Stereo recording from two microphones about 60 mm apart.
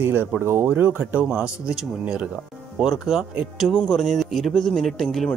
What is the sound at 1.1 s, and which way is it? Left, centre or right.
Speech, centre.